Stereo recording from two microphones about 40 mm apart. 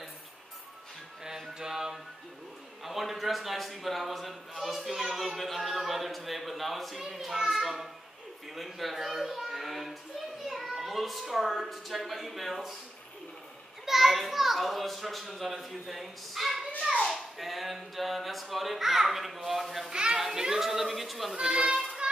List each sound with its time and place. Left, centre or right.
1.6 s music: centre
2.8 s a sound: centre
9.5 s a child's voice: centre
13.8 s a sound: centre
19.9 s children playing: right; by 21.3 s centre
21.3 s children playing: centre